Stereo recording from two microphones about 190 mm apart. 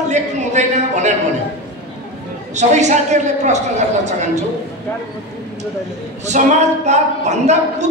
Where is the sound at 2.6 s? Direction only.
40° right (ahead or behind).